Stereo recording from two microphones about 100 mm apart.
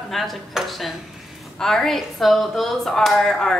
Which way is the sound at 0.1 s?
Centre (ahead or behind).